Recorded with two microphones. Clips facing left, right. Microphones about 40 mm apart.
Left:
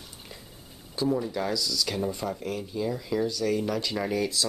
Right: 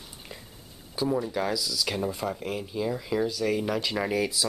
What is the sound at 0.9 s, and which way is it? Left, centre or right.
Speech, centre.